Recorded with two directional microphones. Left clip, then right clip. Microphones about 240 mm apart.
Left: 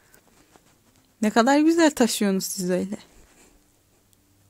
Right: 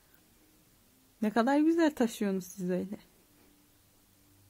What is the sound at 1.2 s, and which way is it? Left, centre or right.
Speech, centre.